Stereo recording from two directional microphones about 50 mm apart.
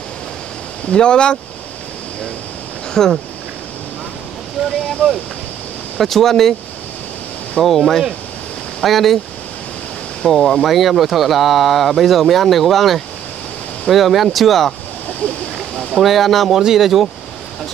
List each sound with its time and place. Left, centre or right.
0.8 s speech: centre
2.9 s speech: centre
4.6 s speech: centre
7.6 s speech: centre
10.3 s speech: centre
16.0 s speech: centre